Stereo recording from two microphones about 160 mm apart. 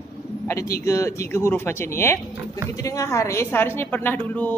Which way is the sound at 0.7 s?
20° left (ahead or behind).